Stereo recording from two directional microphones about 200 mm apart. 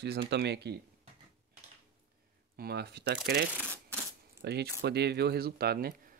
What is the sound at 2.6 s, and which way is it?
Speech, 55° right (ahead or behind).